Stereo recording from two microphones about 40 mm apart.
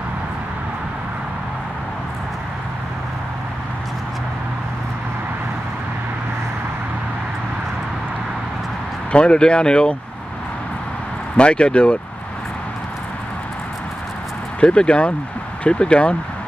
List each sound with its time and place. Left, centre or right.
9.1 s speech: left
11.3 s speech: left
14.6 s speech: left